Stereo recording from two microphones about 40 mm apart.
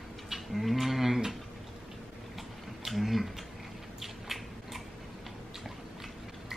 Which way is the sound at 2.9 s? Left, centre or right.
Centre.